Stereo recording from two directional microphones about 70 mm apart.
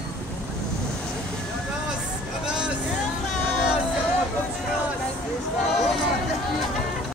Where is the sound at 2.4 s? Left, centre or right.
Centre.